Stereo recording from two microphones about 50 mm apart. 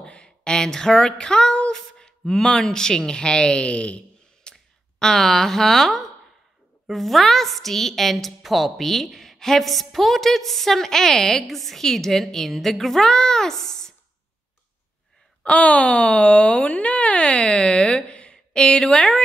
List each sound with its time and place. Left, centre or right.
0.0 s a sound: centre
1.7 s a woman's voice: centre
15.4 s speech: left